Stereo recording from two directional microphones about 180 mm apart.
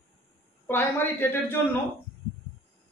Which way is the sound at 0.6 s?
10° left (ahead or behind).